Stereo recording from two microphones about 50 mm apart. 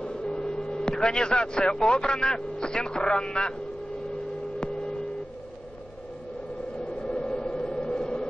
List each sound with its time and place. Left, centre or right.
0.0 s hum: centre
0.8 s speech: centre
6.8 s a sound: centre